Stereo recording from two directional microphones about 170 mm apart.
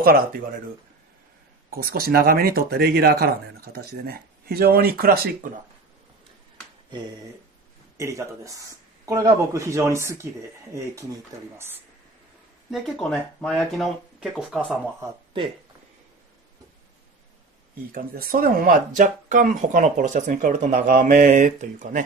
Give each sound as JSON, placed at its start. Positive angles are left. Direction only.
{"t": 0.0, "sound": "speech", "side_deg": -60}
{"t": 1.7, "sound": "speech", "side_deg": -60}
{"t": 8.0, "sound": "speech", "side_deg": -15}
{"t": 12.7, "sound": "speech", "side_deg": 0}
{"t": 17.9, "sound": "speech", "side_deg": -55}